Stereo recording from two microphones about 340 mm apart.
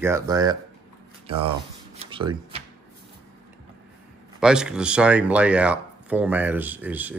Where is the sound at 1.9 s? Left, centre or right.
Centre.